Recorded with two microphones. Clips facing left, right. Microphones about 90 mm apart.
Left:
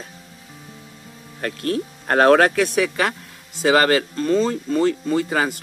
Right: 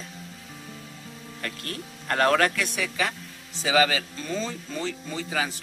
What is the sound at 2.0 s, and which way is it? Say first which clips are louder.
Speech: left 8 dB; 55° left (ahead or behind).